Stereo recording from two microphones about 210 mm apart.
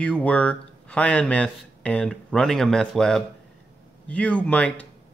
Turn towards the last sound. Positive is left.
turn(degrees=5)  # may be behind; listen again after turning